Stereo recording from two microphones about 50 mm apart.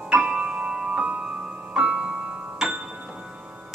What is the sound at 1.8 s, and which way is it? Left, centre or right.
Music, centre.